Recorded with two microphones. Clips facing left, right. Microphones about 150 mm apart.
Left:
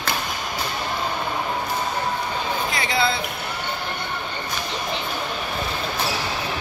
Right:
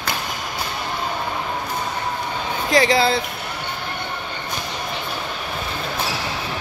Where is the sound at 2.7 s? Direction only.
75° right (ahead or behind).